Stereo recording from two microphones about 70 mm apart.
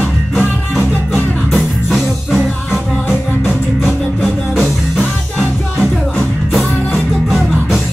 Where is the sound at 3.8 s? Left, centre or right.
Centre.